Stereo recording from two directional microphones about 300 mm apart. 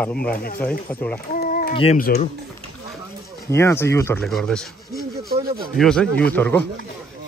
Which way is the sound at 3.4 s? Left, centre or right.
Centre.